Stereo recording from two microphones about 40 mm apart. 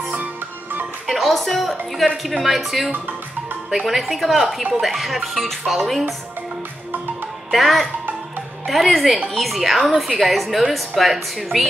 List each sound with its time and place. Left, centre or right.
1.0 s a woman's voice: centre
7.5 s a woman's voice: centre